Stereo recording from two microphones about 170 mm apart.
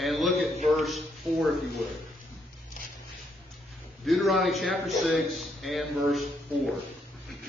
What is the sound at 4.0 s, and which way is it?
A man's voice, centre (ahead or behind).